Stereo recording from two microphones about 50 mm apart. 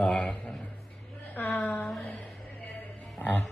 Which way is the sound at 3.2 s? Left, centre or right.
Left.